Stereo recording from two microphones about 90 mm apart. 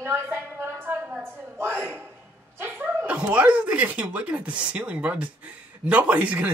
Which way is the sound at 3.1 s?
15° right (ahead or behind).